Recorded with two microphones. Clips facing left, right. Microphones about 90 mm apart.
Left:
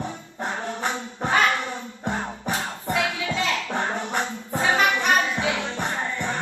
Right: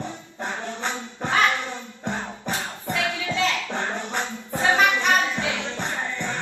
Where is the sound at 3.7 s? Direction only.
15° left (ahead or behind).